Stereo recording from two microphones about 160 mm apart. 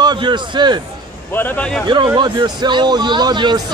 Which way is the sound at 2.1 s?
25° right (ahead or behind).